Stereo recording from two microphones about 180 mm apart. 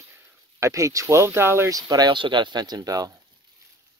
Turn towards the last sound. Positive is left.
turn(degrees=-20)  # may be behind; listen again after turning